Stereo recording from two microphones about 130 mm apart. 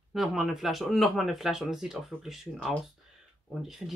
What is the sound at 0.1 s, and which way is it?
Speech, centre (ahead or behind).